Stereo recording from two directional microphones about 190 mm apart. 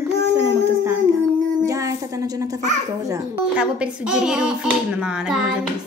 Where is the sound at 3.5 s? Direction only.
5° right (ahead or behind).